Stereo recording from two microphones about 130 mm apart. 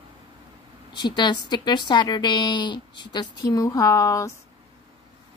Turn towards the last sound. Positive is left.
turn(degrees=25)  # may be behind; listen again after turning